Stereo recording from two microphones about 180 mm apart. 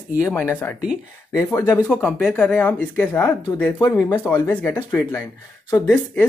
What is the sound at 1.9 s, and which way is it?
Speech, 5° left (ahead or behind).